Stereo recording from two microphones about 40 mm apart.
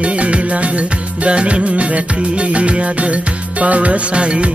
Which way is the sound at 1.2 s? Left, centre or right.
Right.